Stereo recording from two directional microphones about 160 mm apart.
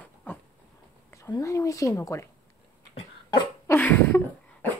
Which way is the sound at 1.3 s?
20° left (ahead or behind).